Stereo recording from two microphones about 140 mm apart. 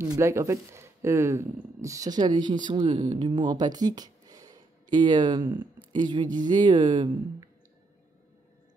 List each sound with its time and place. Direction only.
0.0 s speech: 20° right (ahead or behind)